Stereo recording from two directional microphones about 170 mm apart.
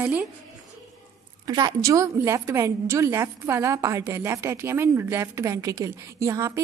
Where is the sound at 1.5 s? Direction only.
25° right (ahead or behind).